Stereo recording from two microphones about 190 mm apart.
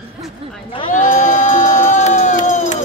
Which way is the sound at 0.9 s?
45° left (ahead or behind).